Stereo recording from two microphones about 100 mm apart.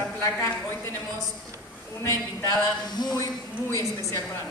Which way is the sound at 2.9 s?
45° left (ahead or behind).